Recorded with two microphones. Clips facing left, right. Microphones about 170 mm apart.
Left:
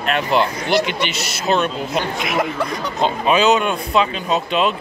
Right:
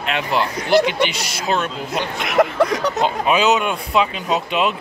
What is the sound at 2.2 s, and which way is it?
Speech, 65° right (ahead or behind).